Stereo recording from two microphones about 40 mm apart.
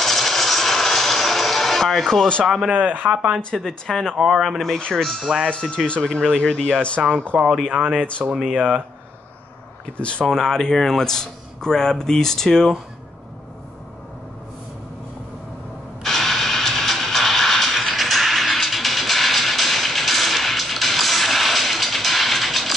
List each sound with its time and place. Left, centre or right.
0.0 s music: centre
2.4 s speech: centre
2.7 s speech: right
3.1 s speech: right
3.5 s speech: centre
4.2 s speech: centre
4.9 s speech: centre
5.2 s speech: right
5.5 s speech: left
7.0 s speech: centre
7.6 s speech: right
9.9 s speech: left
10.3 s speech: centre
16.0 s music: centre